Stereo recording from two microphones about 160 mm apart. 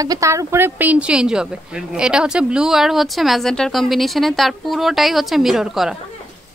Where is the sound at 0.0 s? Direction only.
20° right (ahead or behind).